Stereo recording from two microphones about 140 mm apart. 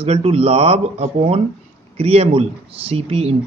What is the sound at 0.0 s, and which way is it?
Speech, 45° right (ahead or behind).